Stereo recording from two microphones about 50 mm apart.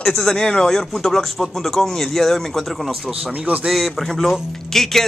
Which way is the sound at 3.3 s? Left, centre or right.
Right.